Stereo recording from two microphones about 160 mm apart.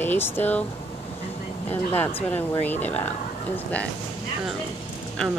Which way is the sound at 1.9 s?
10° left (ahead or behind).